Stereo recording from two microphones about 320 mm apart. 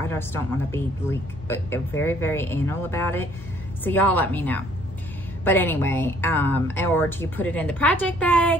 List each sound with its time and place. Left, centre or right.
0.1 s a woman's voice: centre